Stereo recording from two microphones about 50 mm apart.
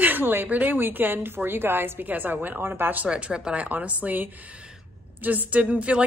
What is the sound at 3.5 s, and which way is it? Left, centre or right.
A woman's voice, right.